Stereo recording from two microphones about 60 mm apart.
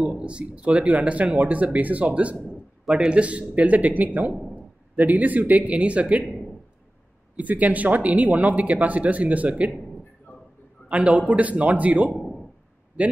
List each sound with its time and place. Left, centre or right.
0.2 s speech: centre
7.3 s speech: right
10.9 s speech: right
12.1 s a sound: centre